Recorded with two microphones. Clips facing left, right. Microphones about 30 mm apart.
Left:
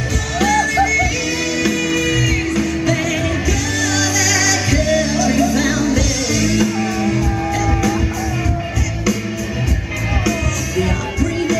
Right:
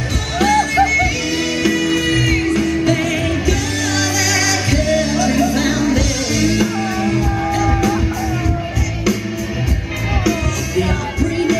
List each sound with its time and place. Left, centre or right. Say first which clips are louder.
0.4 s music: right 1 dB; centre
10.8 s music: right 1 dB; centre